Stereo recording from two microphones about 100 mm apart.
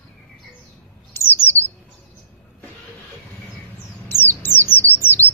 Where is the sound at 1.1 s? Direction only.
25° left (ahead or behind).